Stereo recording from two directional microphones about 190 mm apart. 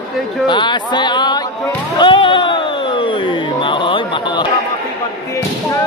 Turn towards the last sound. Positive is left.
turn(degrees=25)  # may be behind; listen again after turning